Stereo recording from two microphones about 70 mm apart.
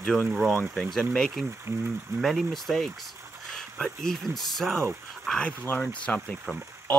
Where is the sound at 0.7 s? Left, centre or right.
Centre.